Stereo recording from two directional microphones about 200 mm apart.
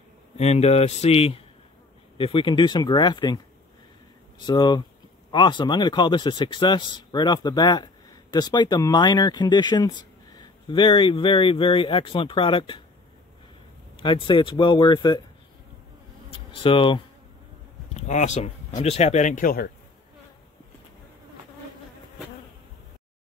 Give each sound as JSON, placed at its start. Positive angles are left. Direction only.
{"t": 0.4, "sound": "speech", "side_deg": 30}
{"t": 4.4, "sound": "speech", "side_deg": 20}
{"t": 13.9, "sound": "speech", "side_deg": 25}
{"t": 16.3, "sound": "a sound", "side_deg": 25}
{"t": 17.9, "sound": "speech", "side_deg": 35}